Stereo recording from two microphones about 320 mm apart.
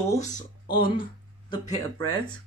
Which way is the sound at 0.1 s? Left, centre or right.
Centre.